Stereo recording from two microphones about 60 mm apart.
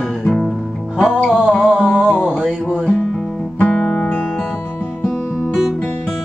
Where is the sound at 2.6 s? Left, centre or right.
Centre.